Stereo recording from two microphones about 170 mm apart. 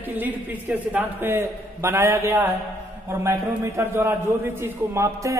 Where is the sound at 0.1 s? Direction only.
10° right (ahead or behind).